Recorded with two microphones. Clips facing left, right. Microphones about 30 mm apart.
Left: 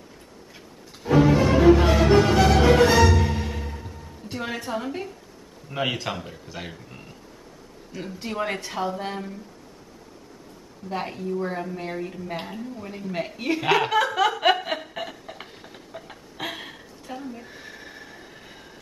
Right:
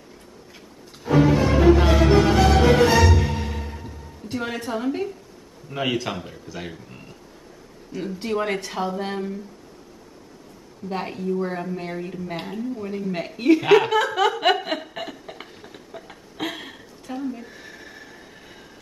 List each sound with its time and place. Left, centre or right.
1.8 s music: centre
4.3 s speech: centre
10.9 s a sound: centre